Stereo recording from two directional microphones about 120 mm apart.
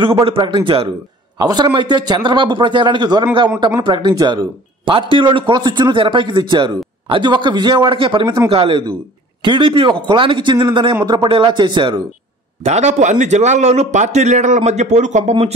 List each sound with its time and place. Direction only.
0.2 s a man's voice: 45° right (ahead or behind)
12.6 s a man's voice: 70° right (ahead or behind)